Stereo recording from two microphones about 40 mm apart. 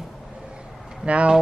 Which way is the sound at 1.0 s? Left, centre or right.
Right.